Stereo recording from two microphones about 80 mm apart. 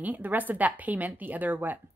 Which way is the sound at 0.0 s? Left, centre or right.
Right.